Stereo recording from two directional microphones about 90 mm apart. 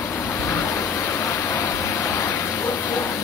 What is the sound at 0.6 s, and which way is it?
Vehicle, 30° left (ahead or behind).